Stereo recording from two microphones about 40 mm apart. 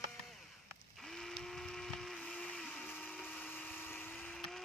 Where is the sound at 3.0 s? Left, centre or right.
Left.